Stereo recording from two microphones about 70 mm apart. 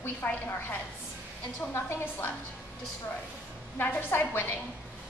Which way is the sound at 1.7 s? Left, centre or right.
Left.